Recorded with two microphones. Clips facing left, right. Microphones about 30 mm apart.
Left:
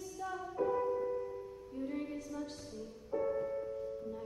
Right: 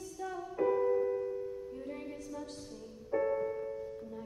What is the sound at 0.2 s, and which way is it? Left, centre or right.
Music, centre.